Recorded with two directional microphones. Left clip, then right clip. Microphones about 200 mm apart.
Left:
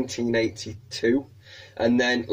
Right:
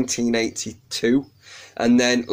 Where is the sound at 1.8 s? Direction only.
15° right (ahead or behind).